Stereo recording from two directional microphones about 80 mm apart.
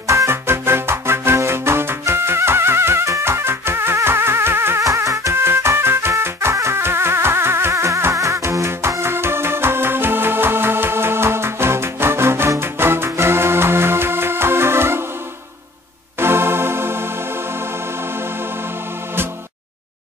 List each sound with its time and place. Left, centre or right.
0.0 s music: right
4.8 s music: right
16.2 s music: right